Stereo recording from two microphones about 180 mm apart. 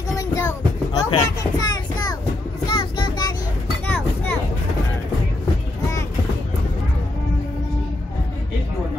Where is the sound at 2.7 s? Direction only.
25° left (ahead or behind).